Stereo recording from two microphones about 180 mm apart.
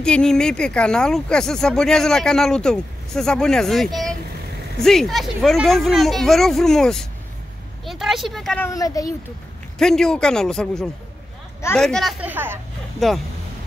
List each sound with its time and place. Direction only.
0.0 s speech: 5° left (ahead or behind)
7.8 s a sound: centre (ahead or behind)
8.6 s speech: 20° left (ahead or behind)
9.8 s speech: 5° left (ahead or behind)
13.0 s speech: centre (ahead or behind)